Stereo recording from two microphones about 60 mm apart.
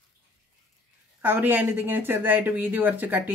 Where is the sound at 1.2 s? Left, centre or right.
Right.